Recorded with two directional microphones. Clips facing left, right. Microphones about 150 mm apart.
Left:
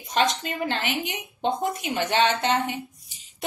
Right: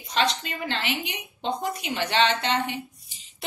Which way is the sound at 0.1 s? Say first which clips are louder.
Left 2 dB; 50° left (ahead or behind).